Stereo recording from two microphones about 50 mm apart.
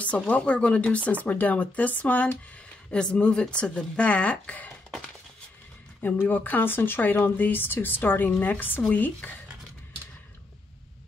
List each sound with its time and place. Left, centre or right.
0.0 s speech: left
6.0 s speech: left